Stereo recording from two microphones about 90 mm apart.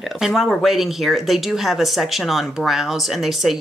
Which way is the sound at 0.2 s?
Centre (ahead or behind).